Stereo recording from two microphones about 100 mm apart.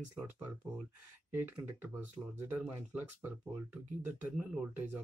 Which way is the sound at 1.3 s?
20° right (ahead or behind).